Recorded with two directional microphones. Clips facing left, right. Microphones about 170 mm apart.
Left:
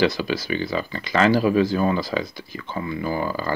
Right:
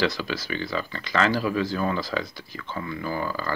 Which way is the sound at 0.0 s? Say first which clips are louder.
Left 5 dB; 10° left (ahead or behind).